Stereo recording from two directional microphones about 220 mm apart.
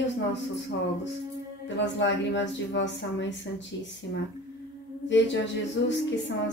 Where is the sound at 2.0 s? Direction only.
55° left (ahead or behind).